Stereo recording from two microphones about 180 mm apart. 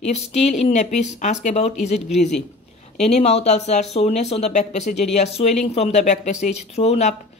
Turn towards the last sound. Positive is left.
turn(degrees=35)  # may be behind; listen again after turning